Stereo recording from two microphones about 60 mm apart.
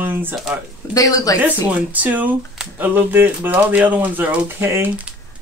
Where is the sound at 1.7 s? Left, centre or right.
Right.